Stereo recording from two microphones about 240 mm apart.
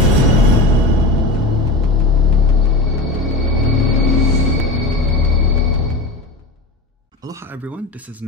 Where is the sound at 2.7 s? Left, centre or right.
Centre.